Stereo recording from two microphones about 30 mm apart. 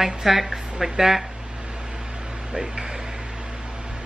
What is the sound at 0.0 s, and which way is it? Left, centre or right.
A woman's voice, centre.